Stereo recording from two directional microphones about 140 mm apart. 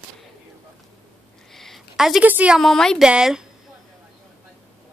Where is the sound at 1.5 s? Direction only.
Centre (ahead or behind).